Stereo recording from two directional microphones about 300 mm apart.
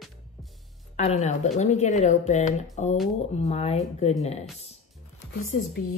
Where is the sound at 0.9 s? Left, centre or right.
Left.